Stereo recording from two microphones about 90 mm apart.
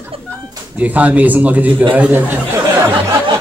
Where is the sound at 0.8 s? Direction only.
15° right (ahead or behind).